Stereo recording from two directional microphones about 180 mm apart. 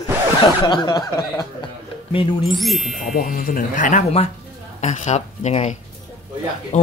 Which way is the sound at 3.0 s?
50° left (ahead or behind).